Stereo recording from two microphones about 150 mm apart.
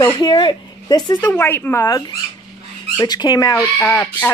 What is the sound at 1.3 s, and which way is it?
Speech, 15° left (ahead or behind).